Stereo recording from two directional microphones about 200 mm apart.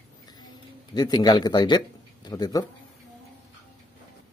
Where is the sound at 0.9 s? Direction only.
20° left (ahead or behind).